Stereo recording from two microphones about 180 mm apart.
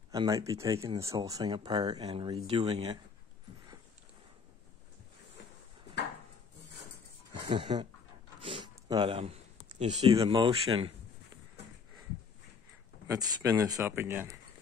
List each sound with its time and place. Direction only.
0.1 s speech: 20° right (ahead or behind)
7.4 s speech: 30° right (ahead or behind)
13.0 s speech: 20° right (ahead or behind)